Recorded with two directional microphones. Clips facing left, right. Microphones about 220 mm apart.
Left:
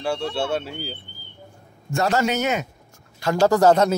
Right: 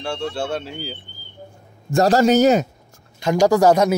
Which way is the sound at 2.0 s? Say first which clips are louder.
Right 7 dB; 35° right (ahead or behind).